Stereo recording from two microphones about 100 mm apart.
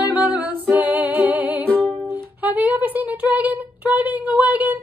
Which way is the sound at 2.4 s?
15° right (ahead or behind).